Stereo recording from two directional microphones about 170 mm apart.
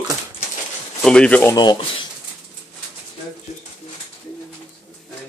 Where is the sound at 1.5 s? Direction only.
25° left (ahead or behind).